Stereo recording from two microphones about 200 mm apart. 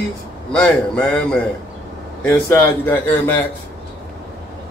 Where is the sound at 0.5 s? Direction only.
5° left (ahead or behind).